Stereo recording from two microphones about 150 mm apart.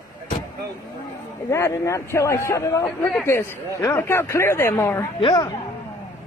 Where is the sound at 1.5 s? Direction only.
20° left (ahead or behind).